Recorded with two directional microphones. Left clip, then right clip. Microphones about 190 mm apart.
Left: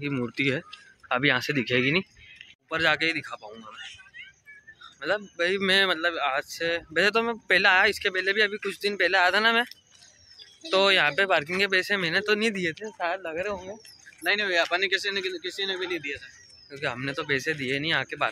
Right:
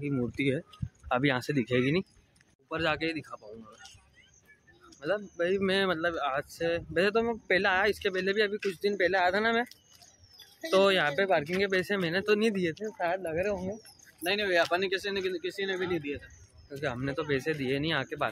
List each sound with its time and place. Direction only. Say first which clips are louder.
0.0 s speech: left 4 dB; centre (ahead or behind)
5.0 s speech: left 4 dB; 5° left (ahead or behind)
10.7 s speech: left 3 dB; 10° right (ahead or behind)
15.9 s speech: left 2 dB; 25° right (ahead or behind)
16.7 s speech: left 3 dB; centre (ahead or behind)